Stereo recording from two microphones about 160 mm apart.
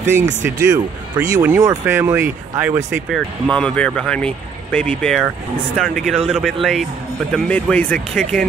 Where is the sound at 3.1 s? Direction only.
5° left (ahead or behind).